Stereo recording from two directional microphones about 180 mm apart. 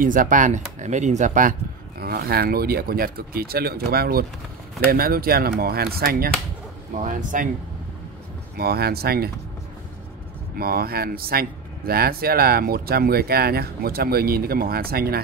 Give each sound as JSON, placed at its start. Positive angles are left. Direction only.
{"t": 0.0, "sound": "speech", "side_deg": -50}
{"t": 7.0, "sound": "speech", "side_deg": -45}
{"t": 8.5, "sound": "speech", "side_deg": -60}
{"t": 10.5, "sound": "speech", "side_deg": -55}